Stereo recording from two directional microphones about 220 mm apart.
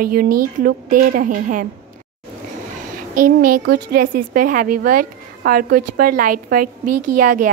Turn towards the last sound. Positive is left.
turn(degrees=-35)  # may be behind; listen again after turning